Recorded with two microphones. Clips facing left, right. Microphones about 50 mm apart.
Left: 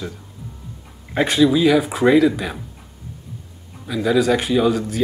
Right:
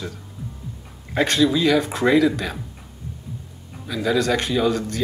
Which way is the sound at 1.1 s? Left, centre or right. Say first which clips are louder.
Left 3 dB; centre.